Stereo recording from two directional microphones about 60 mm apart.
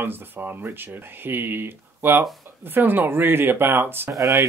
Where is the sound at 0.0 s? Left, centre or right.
Right.